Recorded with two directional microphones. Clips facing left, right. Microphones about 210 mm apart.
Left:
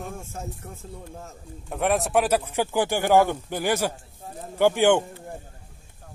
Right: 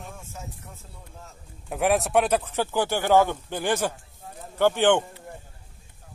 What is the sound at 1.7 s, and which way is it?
Speech, centre (ahead or behind).